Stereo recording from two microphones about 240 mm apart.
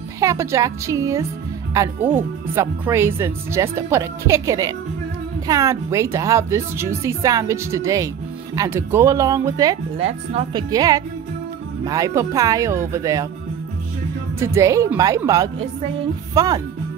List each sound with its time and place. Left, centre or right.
0.2 s speech: centre
10.0 s speech: right
10.7 s speech: centre
14.4 s speech: centre